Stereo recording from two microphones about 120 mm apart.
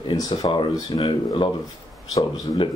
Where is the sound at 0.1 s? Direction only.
40° left (ahead or behind).